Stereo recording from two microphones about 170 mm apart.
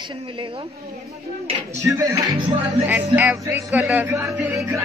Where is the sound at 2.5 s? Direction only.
10° right (ahead or behind).